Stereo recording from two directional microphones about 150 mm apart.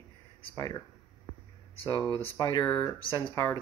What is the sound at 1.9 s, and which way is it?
Speech, 30° left (ahead or behind).